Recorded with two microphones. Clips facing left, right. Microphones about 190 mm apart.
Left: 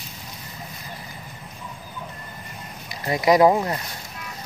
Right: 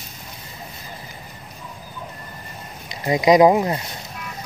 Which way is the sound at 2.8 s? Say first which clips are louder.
Right 3 dB; 20° right (ahead or behind).